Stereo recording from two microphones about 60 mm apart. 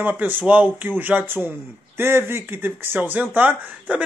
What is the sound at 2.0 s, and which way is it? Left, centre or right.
Speech, right.